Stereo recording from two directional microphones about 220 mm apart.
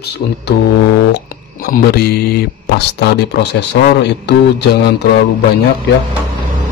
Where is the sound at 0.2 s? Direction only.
45° left (ahead or behind).